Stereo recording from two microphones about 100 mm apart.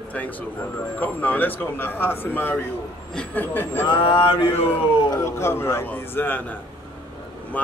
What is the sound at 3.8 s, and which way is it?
Speech, 55° left (ahead or behind).